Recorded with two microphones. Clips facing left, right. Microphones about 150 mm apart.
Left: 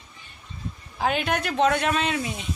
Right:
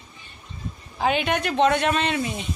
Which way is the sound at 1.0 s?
Centre (ahead or behind).